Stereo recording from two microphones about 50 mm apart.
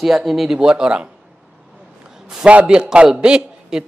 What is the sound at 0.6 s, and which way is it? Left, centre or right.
Speech, centre.